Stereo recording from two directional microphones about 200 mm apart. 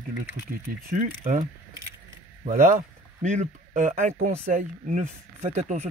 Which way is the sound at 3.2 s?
35° right (ahead or behind).